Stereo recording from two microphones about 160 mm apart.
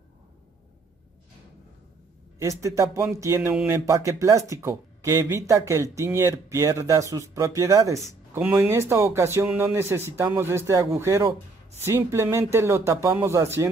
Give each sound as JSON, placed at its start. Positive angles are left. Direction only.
{"t": 2.3, "sound": "speech", "side_deg": -20}